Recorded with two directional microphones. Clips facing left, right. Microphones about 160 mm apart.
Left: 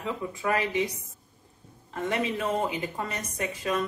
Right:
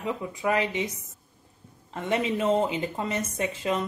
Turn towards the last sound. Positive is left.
turn(degrees=-25)  # may be behind; listen again after turning